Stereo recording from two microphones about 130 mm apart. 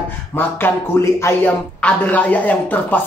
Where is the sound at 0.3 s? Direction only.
15° left (ahead or behind).